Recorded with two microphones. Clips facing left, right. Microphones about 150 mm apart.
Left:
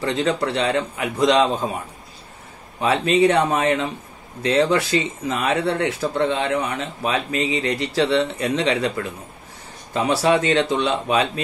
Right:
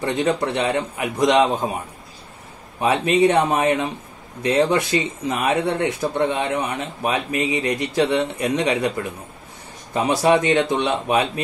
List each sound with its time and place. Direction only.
0.0 s a man's voice: 20° right (ahead or behind)
2.8 s a man's voice: 20° right (ahead or behind)